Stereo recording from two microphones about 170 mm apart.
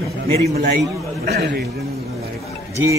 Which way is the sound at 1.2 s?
75° right (ahead or behind).